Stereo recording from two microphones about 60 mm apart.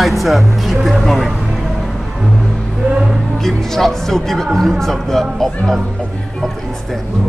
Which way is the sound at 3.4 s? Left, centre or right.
Centre.